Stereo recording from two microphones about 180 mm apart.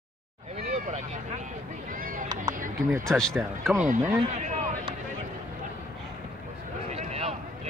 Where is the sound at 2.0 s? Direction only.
50° right (ahead or behind).